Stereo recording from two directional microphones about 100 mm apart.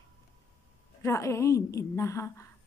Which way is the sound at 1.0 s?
30° left (ahead or behind).